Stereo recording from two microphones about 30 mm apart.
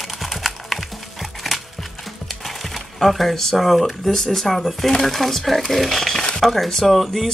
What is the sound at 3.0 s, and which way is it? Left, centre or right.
Speech, centre.